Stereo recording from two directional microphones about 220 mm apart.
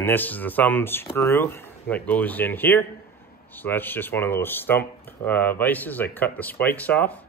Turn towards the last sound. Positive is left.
turn(degrees=5)  # may be behind; listen again after turning